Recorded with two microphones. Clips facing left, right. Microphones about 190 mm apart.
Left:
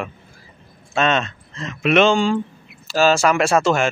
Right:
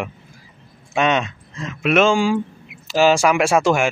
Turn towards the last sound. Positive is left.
turn(degrees=-10)  # may be behind; listen again after turning